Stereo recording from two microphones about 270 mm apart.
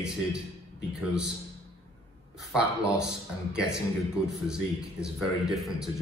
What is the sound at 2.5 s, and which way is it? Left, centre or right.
A man's voice, centre.